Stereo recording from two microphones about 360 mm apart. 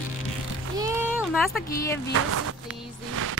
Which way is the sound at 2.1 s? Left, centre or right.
Right.